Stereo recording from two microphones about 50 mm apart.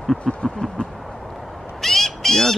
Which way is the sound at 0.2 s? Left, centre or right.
Centre.